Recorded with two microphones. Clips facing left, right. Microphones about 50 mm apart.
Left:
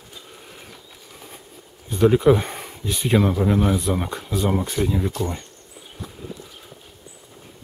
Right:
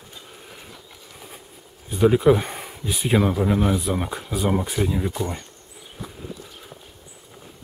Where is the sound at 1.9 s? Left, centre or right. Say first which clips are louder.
Left 1 dB; centre.